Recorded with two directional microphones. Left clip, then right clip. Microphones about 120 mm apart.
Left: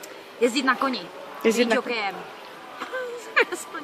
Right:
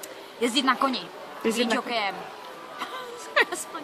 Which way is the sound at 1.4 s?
10° left (ahead or behind).